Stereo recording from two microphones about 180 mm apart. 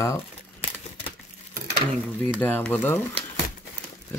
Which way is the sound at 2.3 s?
10° left (ahead or behind).